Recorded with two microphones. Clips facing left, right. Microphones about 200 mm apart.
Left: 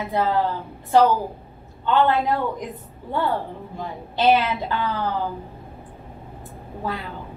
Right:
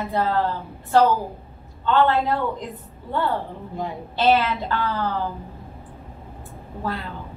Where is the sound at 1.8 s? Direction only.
15° left (ahead or behind).